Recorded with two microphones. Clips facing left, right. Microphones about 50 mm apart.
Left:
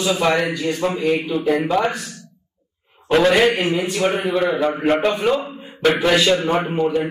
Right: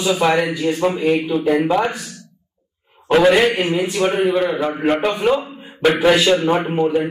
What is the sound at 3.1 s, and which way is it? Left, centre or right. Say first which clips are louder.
A man's voice: right 2 dB; centre.